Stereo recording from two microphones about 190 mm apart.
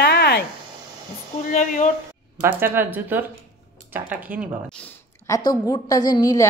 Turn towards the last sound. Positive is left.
turn(degrees=20)  # may be behind; listen again after turning